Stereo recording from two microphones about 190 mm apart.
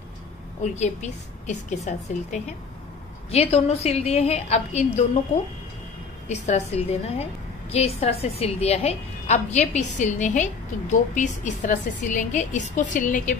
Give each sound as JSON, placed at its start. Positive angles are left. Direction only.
{"t": 0.7, "sound": "a woman's voice", "side_deg": 35}
{"t": 6.2, "sound": "a woman's voice", "side_deg": 35}